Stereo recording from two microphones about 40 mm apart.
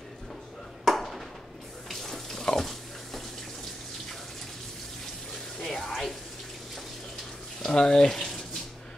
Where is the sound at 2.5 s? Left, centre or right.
Centre.